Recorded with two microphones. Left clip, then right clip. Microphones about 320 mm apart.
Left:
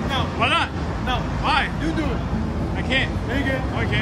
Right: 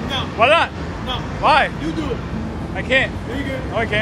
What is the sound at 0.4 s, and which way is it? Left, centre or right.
Speech, centre.